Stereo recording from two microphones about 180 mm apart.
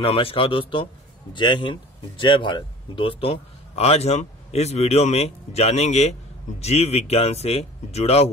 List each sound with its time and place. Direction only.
0.0 s speech: 30° left (ahead or behind)